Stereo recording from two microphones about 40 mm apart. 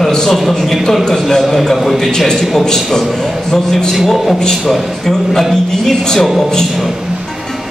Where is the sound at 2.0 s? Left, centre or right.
Centre.